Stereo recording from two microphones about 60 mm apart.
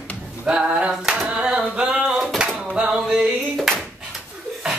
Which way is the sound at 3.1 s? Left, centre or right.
Centre.